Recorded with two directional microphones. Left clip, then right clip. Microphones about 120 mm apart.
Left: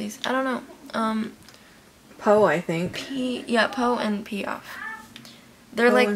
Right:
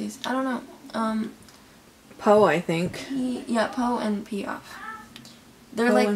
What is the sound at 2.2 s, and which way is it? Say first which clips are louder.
Speech: even; 10° right (ahead or behind).